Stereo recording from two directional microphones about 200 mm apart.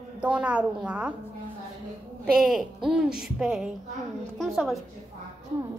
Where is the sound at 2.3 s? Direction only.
Centre (ahead or behind).